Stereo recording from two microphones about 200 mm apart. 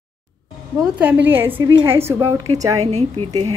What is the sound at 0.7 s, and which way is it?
A woman's voice, 5° right (ahead or behind).